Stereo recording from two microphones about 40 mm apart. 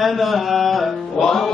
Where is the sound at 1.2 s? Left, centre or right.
Centre.